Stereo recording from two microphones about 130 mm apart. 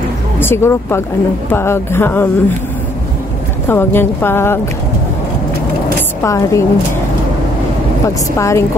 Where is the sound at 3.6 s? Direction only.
15° left (ahead or behind).